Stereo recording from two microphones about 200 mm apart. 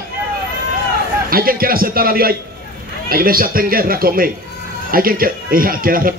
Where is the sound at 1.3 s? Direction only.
45° right (ahead or behind).